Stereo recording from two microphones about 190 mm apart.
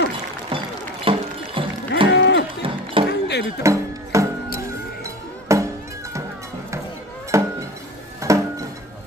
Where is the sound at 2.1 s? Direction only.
65° left (ahead or behind).